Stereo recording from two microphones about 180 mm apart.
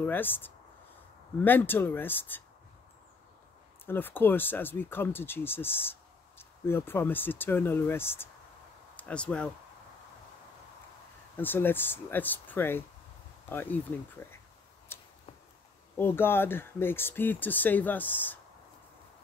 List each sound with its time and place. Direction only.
0.0 s speech: 10° left (ahead or behind)
3.8 s speech: 10° left (ahead or behind)
11.3 s speech: 10° left (ahead or behind)
14.9 s a sound: 15° left (ahead or behind)
16.0 s speech: 10° left (ahead or behind)